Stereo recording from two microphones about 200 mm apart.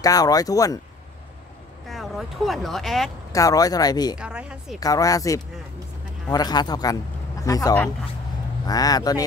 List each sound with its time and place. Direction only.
0.0 s speech: 20° left (ahead or behind)
1.9 s speech: centre (ahead or behind)
3.3 s speech: 15° left (ahead or behind)
4.2 s a woman's voice: 5° right (ahead or behind)
4.7 s speech: 15° left (ahead or behind)